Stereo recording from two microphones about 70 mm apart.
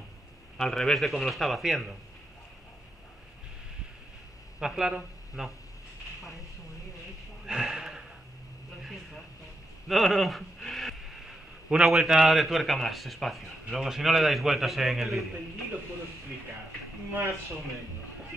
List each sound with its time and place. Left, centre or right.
0.6 s a man's voice: centre
4.6 s speech: centre
7.4 s snort: centre
9.8 s speech: centre
17.1 s speech: right